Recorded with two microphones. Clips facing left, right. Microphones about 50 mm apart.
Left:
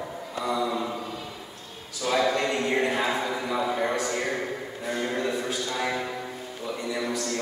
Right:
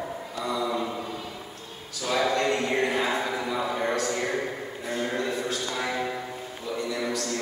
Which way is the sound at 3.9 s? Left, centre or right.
Centre.